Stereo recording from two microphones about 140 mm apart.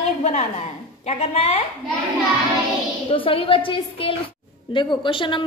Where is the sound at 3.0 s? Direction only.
40° left (ahead or behind).